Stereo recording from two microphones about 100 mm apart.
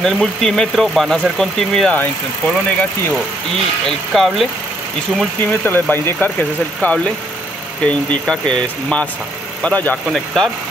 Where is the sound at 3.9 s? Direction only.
Centre (ahead or behind).